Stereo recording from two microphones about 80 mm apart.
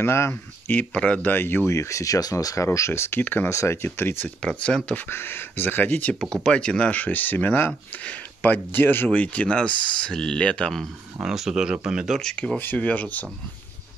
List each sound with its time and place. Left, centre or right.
0.0 s speech: left
0.9 s speech: centre
1.3 s speech: left
3.4 s speech: left
4.4 s speech: centre
6.3 s speech: centre
11.2 s speech: centre
12.2 s speech: centre
12.5 s speech: left